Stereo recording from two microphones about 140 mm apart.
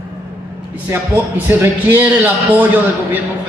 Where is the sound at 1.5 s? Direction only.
15° right (ahead or behind).